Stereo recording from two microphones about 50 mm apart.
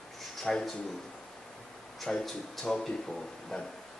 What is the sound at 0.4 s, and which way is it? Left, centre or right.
Speech, centre.